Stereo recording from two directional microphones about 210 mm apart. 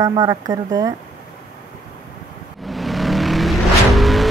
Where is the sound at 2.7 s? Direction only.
Centre (ahead or behind).